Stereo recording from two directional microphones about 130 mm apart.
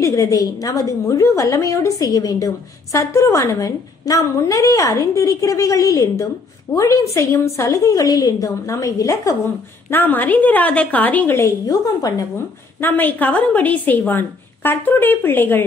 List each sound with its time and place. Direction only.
0.0 s a woman's voice: 25° left (ahead or behind)
12.8 s a woman's voice: 15° left (ahead or behind)